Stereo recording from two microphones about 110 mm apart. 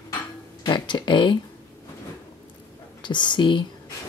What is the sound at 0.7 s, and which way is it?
Speech, 45° left (ahead or behind).